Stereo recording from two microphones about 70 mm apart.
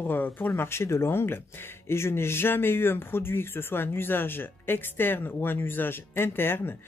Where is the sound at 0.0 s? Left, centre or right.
Left.